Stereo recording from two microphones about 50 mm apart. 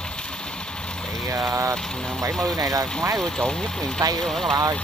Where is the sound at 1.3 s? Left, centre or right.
Right.